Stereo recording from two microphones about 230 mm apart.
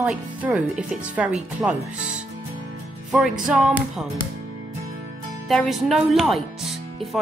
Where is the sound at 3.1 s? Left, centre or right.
Centre.